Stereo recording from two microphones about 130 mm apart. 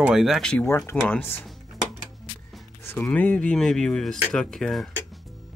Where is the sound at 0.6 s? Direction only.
20° left (ahead or behind).